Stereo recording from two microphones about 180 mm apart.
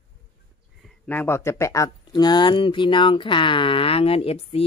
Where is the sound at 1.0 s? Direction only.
10° left (ahead or behind).